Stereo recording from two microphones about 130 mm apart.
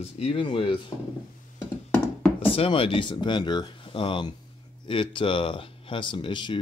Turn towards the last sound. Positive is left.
turn(degrees=35)  # may be behind; listen again after turning